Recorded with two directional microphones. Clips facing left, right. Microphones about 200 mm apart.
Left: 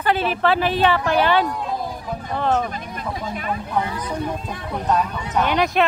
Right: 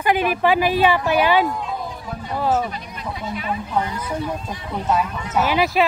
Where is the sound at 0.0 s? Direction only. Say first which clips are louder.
Right 1 dB; 10° right (ahead or behind).